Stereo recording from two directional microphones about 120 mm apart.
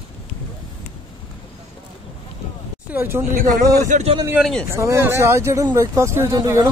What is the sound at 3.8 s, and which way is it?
Speech, 90° right.